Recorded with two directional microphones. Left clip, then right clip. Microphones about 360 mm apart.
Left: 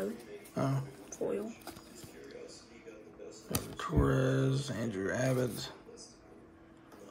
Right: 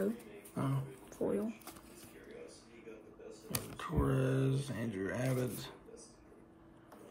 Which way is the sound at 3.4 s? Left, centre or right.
Centre.